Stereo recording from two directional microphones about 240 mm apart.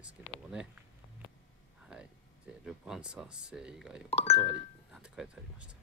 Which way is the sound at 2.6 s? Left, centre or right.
Centre.